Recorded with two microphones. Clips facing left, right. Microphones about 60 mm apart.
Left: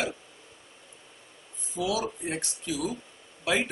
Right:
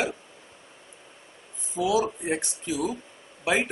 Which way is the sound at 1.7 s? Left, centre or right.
Centre.